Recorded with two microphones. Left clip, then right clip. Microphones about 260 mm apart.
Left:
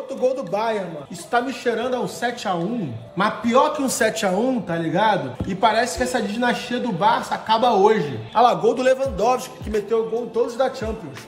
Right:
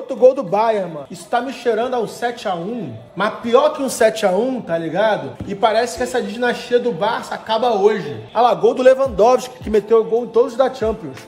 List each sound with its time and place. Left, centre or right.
0.1 s a man's voice: right
1.3 s a woman's voice: centre
8.8 s a man's voice: right